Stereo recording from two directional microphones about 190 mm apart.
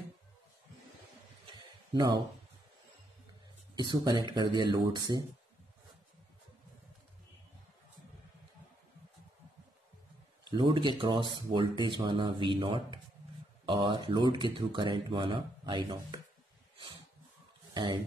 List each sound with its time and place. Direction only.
2.0 s speech: 20° right (ahead or behind)
3.7 s speech: 20° right (ahead or behind)
10.4 s speech: 25° right (ahead or behind)
16.7 s a sound: 25° right (ahead or behind)